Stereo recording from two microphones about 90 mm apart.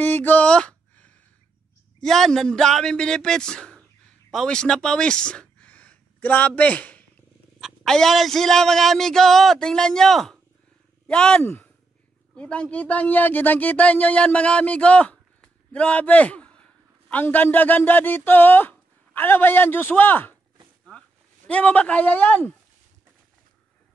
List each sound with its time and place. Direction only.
0.0 s a sound: 20° left (ahead or behind)
2.0 s speech: 5° left (ahead or behind)
7.6 s speech: 5° left (ahead or behind)
11.4 s speech: 20° left (ahead or behind)
21.5 s speech: 15° left (ahead or behind)